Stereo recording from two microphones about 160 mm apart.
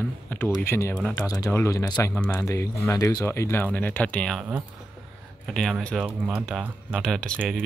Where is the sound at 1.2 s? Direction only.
20° left (ahead or behind).